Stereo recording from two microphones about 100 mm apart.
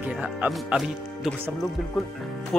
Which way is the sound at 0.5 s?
5° right (ahead or behind).